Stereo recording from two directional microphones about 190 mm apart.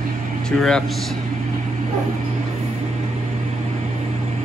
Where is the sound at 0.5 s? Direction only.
5° left (ahead or behind).